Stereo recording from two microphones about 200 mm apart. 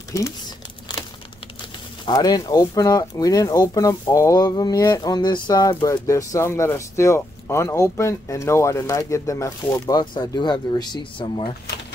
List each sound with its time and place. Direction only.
2.0 s speech: 20° left (ahead or behind)